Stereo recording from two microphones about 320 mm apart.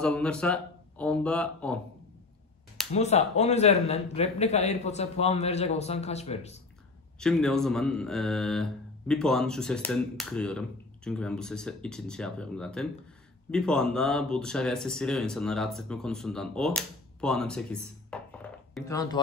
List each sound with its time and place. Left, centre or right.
0.0 s speech: centre
2.9 s speech: centre
7.2 s speech: centre